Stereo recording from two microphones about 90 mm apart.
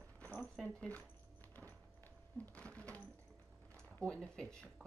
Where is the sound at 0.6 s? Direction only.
15° left (ahead or behind).